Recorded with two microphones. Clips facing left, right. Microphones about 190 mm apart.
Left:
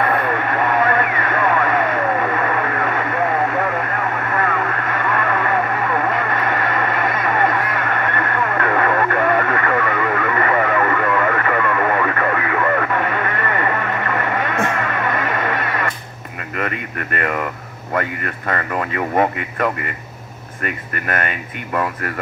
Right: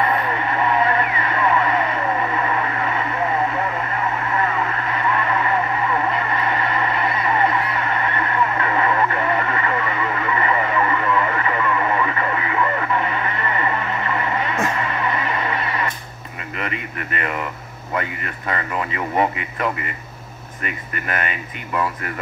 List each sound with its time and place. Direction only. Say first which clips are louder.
0.0 s radio: left 2 dB; 55° left (ahead or behind)
16.5 s a sound: left 4 dB; 50° left (ahead or behind)
17.9 s speech: left 3 dB; 50° left (ahead or behind)